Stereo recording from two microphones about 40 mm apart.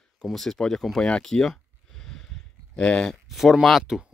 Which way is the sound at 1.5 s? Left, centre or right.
Centre.